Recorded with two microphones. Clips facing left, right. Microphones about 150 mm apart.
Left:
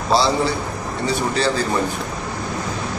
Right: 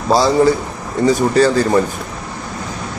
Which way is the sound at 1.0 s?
45° right (ahead or behind).